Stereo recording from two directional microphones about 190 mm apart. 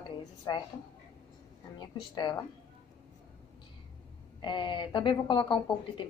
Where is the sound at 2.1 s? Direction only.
25° left (ahead or behind).